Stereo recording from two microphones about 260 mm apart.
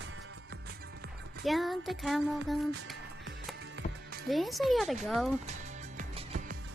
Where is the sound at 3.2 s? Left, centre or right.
Right.